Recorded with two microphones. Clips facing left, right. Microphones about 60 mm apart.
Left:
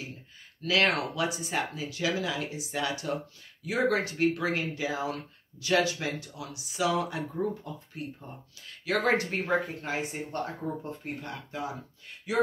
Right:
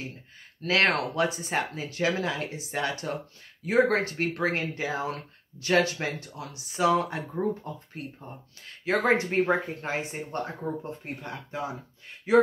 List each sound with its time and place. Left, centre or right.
0.6 s speech: right
12.3 s speech: right